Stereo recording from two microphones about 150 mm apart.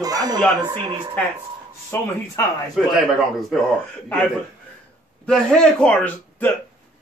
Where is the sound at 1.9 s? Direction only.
15° left (ahead or behind).